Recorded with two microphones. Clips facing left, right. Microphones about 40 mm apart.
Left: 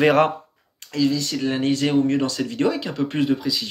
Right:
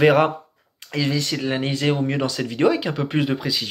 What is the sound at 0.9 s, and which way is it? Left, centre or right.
Speech, right.